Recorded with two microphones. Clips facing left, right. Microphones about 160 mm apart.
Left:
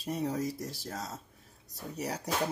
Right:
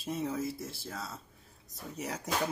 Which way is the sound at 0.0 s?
70° left (ahead or behind).